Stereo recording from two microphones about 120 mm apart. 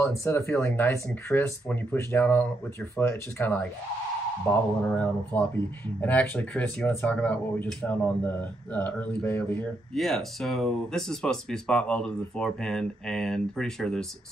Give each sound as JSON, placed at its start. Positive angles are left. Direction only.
{"t": 0.2, "sound": "speech", "side_deg": 25}
{"t": 9.9, "sound": "speech", "side_deg": 0}